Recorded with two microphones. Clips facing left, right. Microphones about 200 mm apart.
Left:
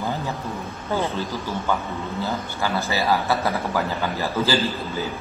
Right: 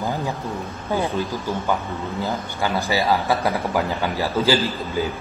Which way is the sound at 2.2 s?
15° right (ahead or behind).